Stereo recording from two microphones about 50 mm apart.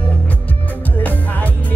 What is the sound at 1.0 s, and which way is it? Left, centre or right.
Music, left.